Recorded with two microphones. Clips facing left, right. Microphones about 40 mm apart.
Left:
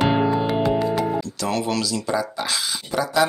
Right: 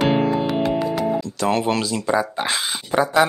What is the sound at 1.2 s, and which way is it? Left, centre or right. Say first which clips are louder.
Speech: right 4 dB; right.